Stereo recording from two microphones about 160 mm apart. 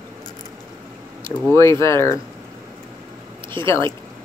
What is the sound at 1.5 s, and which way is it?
Speech, 15° left (ahead or behind).